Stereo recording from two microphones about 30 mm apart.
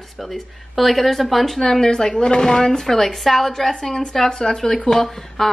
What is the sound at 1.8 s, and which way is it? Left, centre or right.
Speech, left.